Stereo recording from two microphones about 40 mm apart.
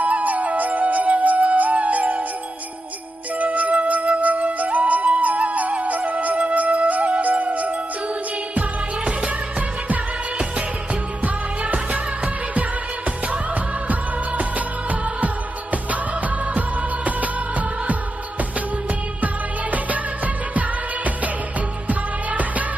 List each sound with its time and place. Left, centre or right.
0.0 s music: right
3.3 s flute: right
8.5 s music: right
11.2 s music: right
13.8 s music: right
16.5 s music of bollywood: right
19.2 s music: right
21.8 s music: right